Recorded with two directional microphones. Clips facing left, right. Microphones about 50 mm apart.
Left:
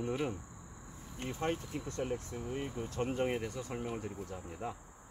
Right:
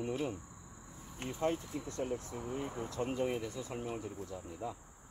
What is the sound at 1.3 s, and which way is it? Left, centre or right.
Speech, left.